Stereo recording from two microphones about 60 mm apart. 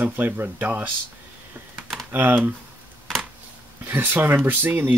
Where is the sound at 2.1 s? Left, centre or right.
Right.